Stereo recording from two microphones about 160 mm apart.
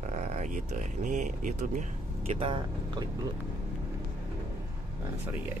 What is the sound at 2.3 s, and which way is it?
Speech, 35° right (ahead or behind).